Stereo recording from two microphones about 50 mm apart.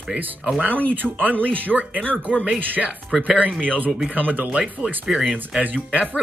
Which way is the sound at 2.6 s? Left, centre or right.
Right.